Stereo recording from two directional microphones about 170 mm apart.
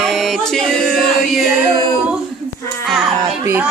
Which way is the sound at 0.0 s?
Centre (ahead or behind).